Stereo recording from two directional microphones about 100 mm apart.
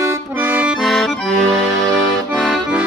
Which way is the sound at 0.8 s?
Centre (ahead or behind).